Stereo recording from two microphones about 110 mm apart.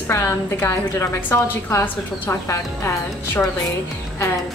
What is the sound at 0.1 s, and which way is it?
A woman's voice, 25° left (ahead or behind).